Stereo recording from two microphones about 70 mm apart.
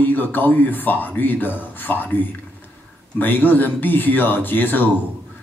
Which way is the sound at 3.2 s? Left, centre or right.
Left.